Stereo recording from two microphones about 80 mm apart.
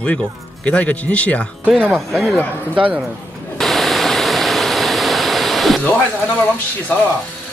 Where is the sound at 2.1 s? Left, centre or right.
Centre.